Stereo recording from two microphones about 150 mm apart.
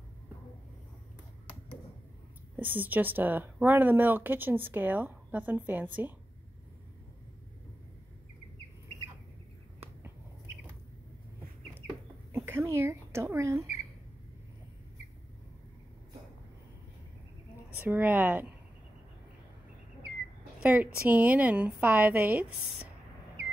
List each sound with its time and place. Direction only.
2.5 s speech: 10° right (ahead or behind)
12.4 s a sound: 15° right (ahead or behind)
17.7 s speech: 10° right (ahead or behind)
20.6 s speech: 10° right (ahead or behind)